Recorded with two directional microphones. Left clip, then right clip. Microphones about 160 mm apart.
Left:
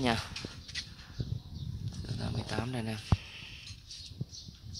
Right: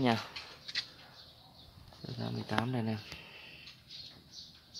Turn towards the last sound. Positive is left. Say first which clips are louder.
# left 8 dB
turn(degrees=0)  # may be behind; listen again after turning